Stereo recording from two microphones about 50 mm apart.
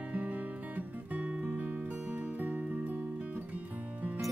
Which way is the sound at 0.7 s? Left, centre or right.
Right.